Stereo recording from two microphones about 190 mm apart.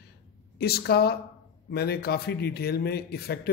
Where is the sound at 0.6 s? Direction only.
55° left (ahead or behind).